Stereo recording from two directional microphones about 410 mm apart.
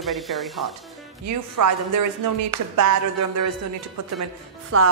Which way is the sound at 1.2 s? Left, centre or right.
Right.